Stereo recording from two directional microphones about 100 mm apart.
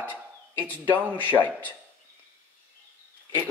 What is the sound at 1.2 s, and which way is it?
Speech, 15° left (ahead or behind).